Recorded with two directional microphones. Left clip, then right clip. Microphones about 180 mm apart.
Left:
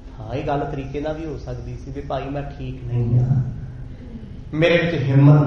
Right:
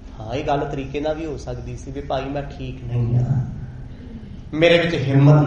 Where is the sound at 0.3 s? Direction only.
25° right (ahead or behind).